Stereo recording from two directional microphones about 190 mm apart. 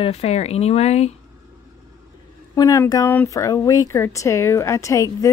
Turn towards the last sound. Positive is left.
turn(degrees=15)  # may be behind; listen again after turning